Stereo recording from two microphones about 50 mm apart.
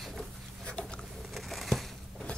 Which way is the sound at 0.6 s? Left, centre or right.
Centre.